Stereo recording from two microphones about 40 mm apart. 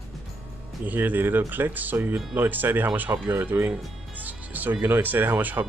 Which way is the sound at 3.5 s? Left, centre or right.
Right.